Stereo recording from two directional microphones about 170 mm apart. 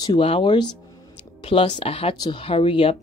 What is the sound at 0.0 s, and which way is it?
Speech, 30° left (ahead or behind).